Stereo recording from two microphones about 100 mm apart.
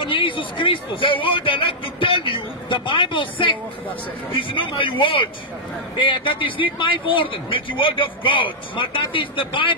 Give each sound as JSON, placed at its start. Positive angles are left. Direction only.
{"t": 0.0, "sound": "a man's voice", "side_deg": 55}